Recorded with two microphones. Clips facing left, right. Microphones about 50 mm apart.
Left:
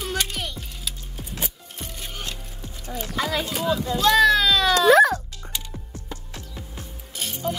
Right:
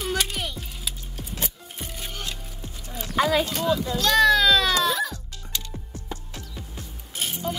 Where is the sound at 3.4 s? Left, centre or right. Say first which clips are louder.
Even; centre.